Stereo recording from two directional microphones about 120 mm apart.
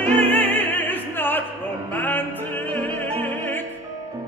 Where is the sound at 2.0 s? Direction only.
15° left (ahead or behind).